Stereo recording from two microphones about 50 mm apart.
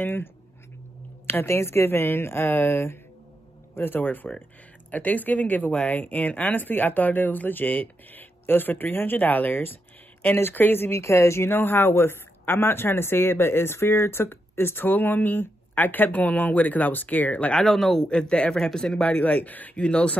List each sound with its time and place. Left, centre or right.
0.0 s speech: left
1.2 s speech: left
10.9 s speech: left
17.6 s a man's voice: centre
18.0 s speech: centre
19.0 s speech: left